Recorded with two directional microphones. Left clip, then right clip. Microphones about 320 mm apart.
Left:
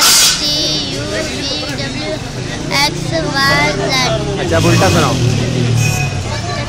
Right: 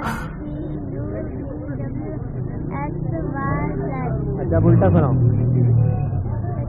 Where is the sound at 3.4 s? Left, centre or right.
Centre.